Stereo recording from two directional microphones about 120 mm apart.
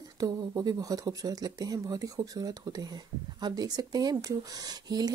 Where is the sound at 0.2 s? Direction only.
30° right (ahead or behind).